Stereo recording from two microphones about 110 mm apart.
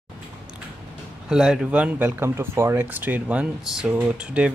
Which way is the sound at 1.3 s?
5° right (ahead or behind).